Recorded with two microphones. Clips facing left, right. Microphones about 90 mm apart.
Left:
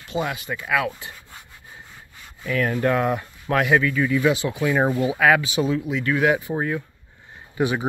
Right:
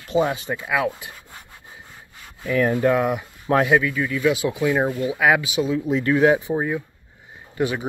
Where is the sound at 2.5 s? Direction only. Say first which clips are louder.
Right 3 dB; 15° right (ahead or behind).